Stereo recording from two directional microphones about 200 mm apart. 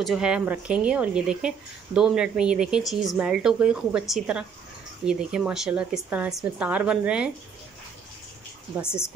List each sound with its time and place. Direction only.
0.0 s speech: centre (ahead or behind)